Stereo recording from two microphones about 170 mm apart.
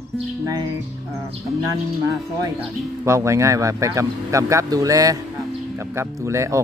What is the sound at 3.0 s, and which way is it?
Speech, 15° right (ahead or behind).